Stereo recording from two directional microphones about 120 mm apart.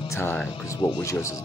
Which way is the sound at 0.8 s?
35° left (ahead or behind).